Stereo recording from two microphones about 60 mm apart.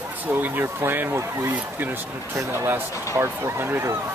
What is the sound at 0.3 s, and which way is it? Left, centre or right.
Speech, right.